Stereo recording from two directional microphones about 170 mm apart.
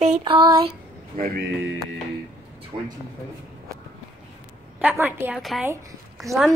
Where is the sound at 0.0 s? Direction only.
40° right (ahead or behind).